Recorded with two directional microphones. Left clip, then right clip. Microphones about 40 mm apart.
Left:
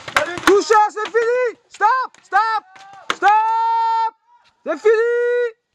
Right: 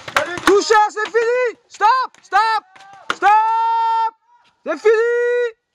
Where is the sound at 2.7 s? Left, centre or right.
Centre.